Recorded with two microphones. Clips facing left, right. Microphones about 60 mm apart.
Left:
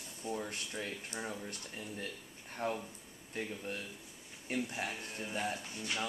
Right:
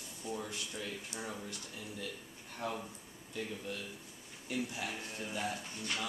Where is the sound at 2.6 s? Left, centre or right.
Left.